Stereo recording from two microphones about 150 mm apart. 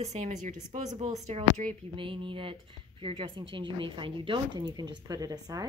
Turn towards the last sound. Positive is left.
turn(degrees=-25)  # may be behind; listen again after turning